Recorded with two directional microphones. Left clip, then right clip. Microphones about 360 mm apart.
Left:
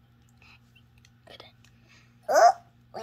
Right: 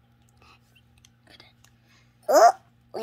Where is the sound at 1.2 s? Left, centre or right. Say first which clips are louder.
Left 4 dB; centre.